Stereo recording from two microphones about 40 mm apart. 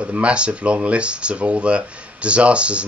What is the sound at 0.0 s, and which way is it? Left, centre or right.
Speech, right.